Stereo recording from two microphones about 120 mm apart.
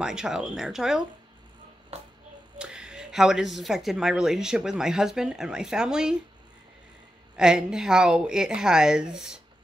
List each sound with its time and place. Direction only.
0.0 s a woman's voice: 5° right (ahead or behind)
2.6 s a woman's voice: 5° right (ahead or behind)
7.3 s a woman's voice: 5° right (ahead or behind)